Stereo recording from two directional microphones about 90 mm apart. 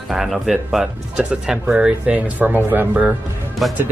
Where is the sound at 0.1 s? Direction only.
5° right (ahead or behind).